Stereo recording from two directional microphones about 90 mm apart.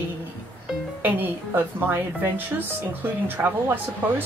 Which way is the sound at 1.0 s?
20° right (ahead or behind).